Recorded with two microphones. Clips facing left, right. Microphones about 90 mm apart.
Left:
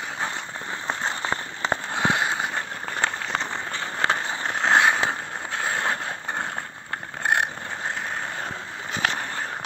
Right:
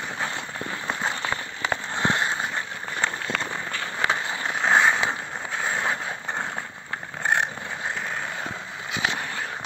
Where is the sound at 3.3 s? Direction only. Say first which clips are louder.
Left 1 dB; 25° left (ahead or behind).